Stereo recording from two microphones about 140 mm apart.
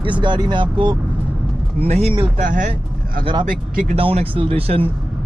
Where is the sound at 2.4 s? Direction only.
65° right (ahead or behind).